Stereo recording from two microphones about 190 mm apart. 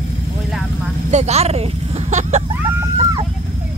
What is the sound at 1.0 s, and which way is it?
Speech, 35° right (ahead or behind).